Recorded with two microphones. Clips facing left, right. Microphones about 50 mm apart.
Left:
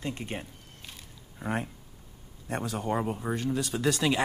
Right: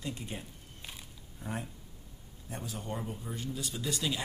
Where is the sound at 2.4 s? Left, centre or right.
Left.